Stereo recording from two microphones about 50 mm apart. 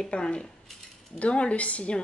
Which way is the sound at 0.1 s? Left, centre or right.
Centre.